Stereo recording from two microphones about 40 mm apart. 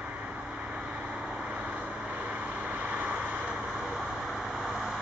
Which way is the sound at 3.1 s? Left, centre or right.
Right.